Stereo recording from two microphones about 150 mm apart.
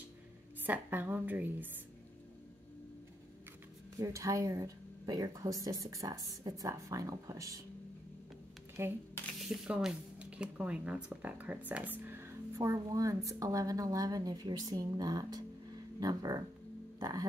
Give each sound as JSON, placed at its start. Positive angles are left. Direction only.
{"t": 0.6, "sound": "a woman's voice", "side_deg": -15}
{"t": 4.0, "sound": "speech", "side_deg": -20}
{"t": 8.8, "sound": "a woman's voice", "side_deg": -20}
{"t": 9.4, "sound": "speech", "side_deg": -5}